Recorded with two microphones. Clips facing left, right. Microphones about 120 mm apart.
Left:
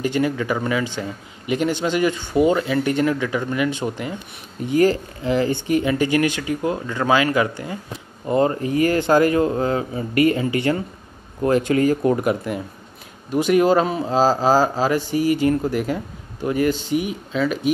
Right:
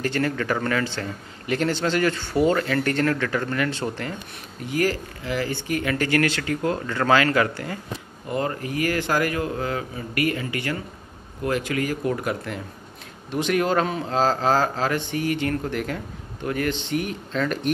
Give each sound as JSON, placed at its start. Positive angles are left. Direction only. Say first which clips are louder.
{"t": 0.0, "sound": "speech", "louder": "left 3 dB", "side_deg": 15}
{"t": 8.3, "sound": "a man's voice", "louder": "left 8 dB", "side_deg": 25}
{"t": 12.2, "sound": "speech", "louder": "left 6 dB", "side_deg": 15}